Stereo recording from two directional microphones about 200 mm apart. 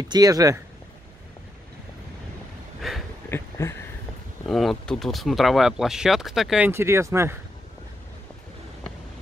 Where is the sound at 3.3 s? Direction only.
10° left (ahead or behind).